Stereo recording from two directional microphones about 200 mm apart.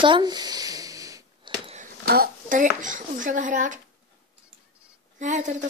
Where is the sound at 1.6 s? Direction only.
35° right (ahead or behind).